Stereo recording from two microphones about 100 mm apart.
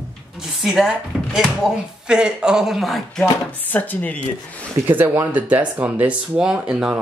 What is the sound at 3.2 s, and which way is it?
Speech, 20° left (ahead or behind).